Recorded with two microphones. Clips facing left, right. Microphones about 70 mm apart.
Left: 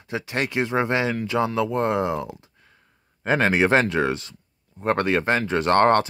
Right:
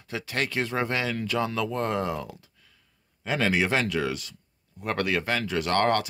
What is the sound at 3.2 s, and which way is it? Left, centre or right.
Speech, left.